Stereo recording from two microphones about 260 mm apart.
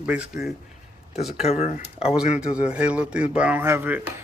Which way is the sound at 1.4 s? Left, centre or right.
Left.